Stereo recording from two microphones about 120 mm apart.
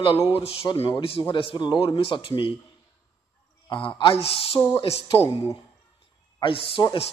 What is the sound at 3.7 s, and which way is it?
Speech, 45° left (ahead or behind).